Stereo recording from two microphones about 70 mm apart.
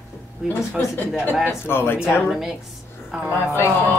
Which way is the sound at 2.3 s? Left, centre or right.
Centre.